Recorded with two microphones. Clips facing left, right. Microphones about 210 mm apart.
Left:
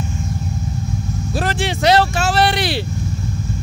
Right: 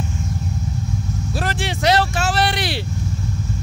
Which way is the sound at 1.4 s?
25° left (ahead or behind).